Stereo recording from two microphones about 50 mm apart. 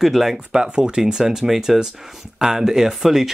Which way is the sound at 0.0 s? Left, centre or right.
Centre.